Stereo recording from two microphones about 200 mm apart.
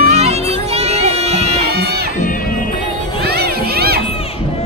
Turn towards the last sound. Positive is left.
turn(degrees=-50)  # may be behind; listen again after turning